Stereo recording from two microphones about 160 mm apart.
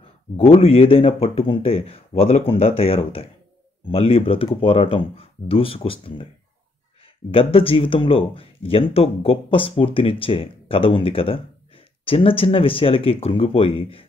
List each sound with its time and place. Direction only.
0.4 s speech: 35° left (ahead or behind)
7.2 s speech: 35° left (ahead or behind)